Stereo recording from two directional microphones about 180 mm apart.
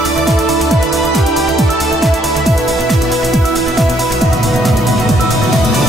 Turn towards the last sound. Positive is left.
turn(degrees=0)  # may be behind; listen again after turning